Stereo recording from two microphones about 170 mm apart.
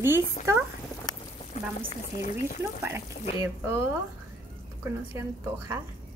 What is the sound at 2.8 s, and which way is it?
A woman's voice, 15° right (ahead or behind).